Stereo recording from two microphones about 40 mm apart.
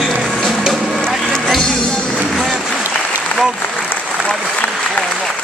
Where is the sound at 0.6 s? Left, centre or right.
Centre.